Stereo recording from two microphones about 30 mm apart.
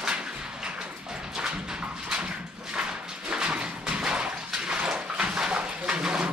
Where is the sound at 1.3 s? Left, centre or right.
Right.